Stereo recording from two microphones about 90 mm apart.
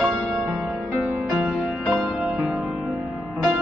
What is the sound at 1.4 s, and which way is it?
Music, 10° right (ahead or behind).